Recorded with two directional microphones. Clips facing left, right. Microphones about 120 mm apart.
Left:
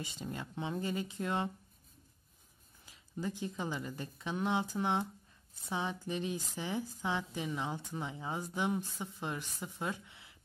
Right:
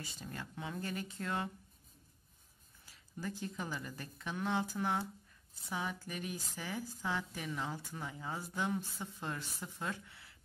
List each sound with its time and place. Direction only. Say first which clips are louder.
0.0 s speech: left 4 dB; 20° left (ahead or behind)
2.8 s a woman's voice: left 4 dB; 20° left (ahead or behind)